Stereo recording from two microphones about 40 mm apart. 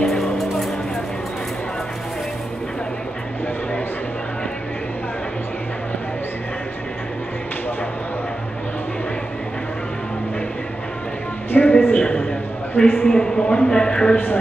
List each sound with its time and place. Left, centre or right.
0.0 s music: centre
11.5 s a sound: left
13.1 s speech: centre
14.1 s speech: left